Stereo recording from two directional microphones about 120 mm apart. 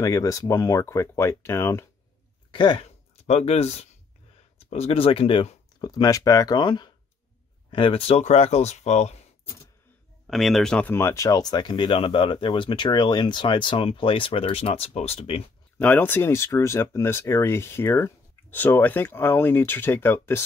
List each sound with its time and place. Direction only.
0.0 s speech: 25° left (ahead or behind)
2.5 s speech: 45° left (ahead or behind)
3.3 s speech: 60° left (ahead or behind)
5.8 s speech: 30° left (ahead or behind); by 9.2 s 65° left (ahead or behind)
10.2 s speech: centre (ahead or behind)
11.0 s speech: 25° left (ahead or behind); by 15.4 s 55° left (ahead or behind)
15.8 s speech: 15° left (ahead or behind)